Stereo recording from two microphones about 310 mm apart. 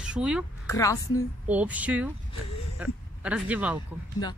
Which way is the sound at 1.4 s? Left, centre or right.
Centre.